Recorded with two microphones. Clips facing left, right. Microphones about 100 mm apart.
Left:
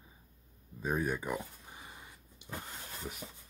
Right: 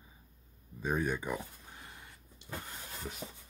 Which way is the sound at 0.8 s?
5° left (ahead or behind).